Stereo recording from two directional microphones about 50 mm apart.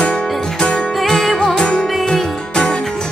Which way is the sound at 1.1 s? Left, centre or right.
Centre.